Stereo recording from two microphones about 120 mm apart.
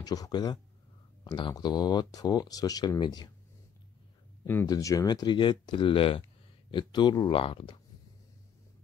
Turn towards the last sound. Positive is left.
turn(degrees=50)  # may be behind; listen again after turning